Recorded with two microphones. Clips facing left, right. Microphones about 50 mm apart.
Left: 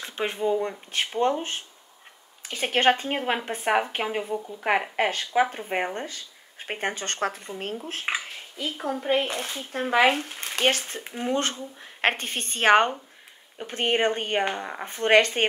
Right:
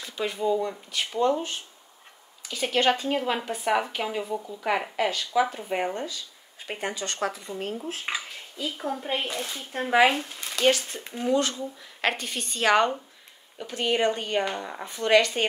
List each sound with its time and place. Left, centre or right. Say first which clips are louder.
0.0 s speech: left 1 dB; left
2.4 s speech: left 2 dB; left